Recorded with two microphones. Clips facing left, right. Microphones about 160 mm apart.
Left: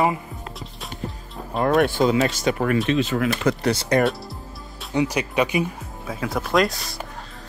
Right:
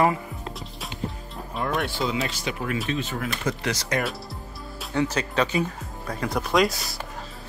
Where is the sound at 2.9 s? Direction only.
90° left.